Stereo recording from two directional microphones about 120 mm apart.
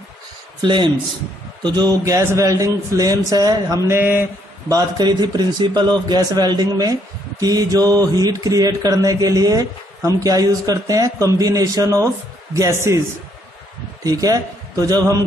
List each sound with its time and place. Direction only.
0.6 s a man's voice: 40° right (ahead or behind); by 4.3 s 15° right (ahead or behind)
4.6 s a man's voice: 35° right (ahead or behind)
14.0 s a man's voice: 30° right (ahead or behind)